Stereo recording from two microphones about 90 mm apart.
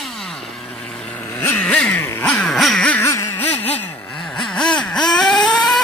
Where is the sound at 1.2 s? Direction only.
30° left (ahead or behind).